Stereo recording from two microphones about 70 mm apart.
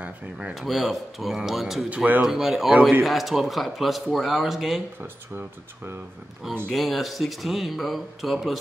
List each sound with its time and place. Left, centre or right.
0.6 s a man's voice: centre
1.9 s speech: right
2.2 s a man's voice: centre
6.7 s a man's voice: centre